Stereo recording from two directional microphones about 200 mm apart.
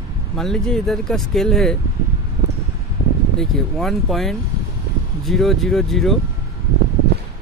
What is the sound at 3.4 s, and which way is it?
Speech, centre (ahead or behind).